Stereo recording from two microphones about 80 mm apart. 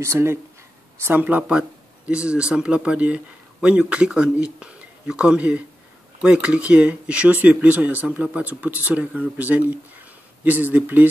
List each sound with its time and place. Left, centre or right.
0.0 s speech: right
1.0 s speech: right